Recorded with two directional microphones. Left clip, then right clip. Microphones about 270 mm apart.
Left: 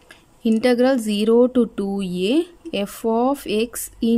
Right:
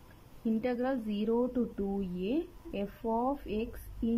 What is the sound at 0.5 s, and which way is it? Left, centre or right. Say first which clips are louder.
Speech: left 16 dB; left.